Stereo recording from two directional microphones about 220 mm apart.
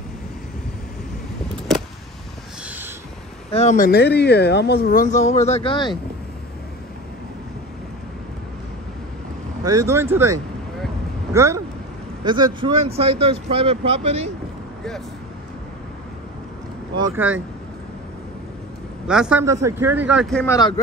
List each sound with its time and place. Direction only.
1.7 s vehicle: centre (ahead or behind)
3.5 s speech: 35° left (ahead or behind)
9.6 s speech: 15° right (ahead or behind)
16.9 s speech: 10° right (ahead or behind)
19.0 s speech: 5° right (ahead or behind)
20.5 s speech: 15° left (ahead or behind)